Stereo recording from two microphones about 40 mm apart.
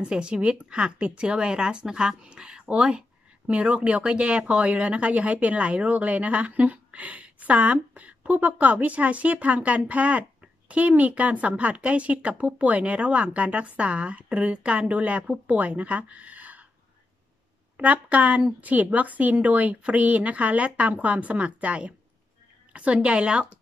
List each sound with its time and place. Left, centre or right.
0.0 s a woman's voice: right
17.7 s a woman's voice: right